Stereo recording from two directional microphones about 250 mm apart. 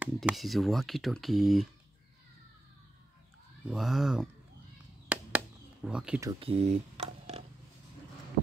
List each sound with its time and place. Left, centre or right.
0.0 s speech: centre
3.6 s speech: centre
5.9 s speech: centre
6.4 s speech: right